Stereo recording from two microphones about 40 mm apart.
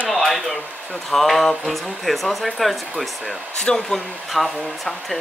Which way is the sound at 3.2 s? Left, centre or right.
Centre.